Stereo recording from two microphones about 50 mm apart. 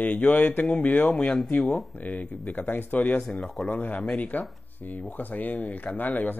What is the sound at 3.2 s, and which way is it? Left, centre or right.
Speech, centre.